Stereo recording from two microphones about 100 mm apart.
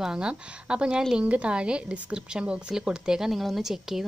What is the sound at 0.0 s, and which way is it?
A woman's voice, 10° right (ahead or behind).